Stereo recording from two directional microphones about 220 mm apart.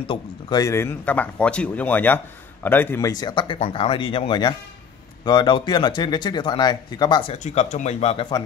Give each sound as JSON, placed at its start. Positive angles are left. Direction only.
{"t": 0.0, "sound": "speech", "side_deg": 20}